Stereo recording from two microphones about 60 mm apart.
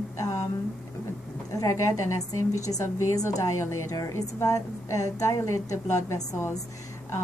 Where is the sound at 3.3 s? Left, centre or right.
Left.